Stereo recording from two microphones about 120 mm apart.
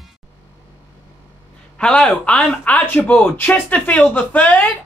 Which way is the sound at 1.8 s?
10° left (ahead or behind).